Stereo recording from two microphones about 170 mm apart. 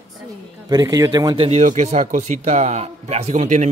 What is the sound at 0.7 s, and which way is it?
Speech, 20° right (ahead or behind).